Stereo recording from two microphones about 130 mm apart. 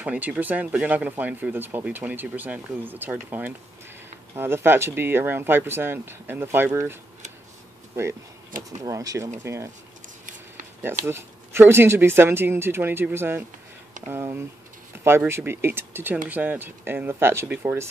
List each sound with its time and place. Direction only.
0.0 s speech: 10° right (ahead or behind)
8.8 s speech: 25° right (ahead or behind)
10.0 s a sound: 80° right
11.1 s speech: 20° right (ahead or behind)